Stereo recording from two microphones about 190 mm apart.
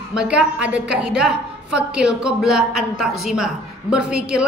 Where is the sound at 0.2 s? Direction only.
5° right (ahead or behind).